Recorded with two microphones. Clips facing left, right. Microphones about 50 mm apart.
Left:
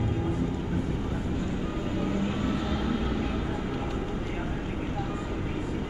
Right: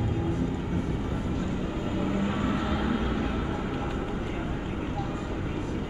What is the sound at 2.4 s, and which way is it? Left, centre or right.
Vehicle, centre.